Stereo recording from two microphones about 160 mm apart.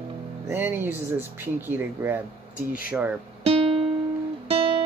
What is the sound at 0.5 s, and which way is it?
Speech, 10° right (ahead or behind).